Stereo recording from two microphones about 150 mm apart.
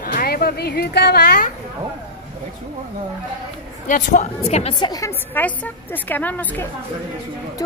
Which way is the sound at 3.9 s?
55° left (ahead or behind).